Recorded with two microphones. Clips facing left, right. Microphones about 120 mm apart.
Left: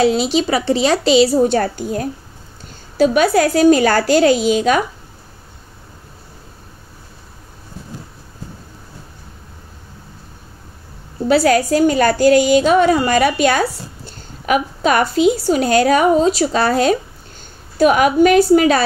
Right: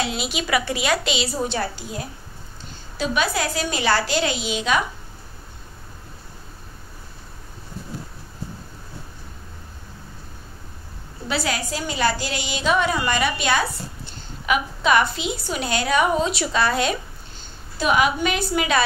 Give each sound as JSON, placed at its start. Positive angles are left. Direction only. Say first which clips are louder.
{"t": 0.0, "sound": "a woman's voice", "louder": "left 12 dB", "side_deg": 35}
{"t": 11.2, "sound": "a woman's voice", "louder": "left 13 dB", "side_deg": 45}